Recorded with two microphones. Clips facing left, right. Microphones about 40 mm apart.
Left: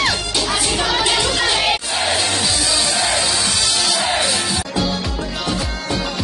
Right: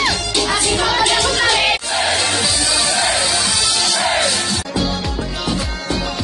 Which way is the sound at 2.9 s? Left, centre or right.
Right.